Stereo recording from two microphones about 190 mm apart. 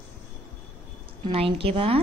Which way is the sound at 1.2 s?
30° right (ahead or behind).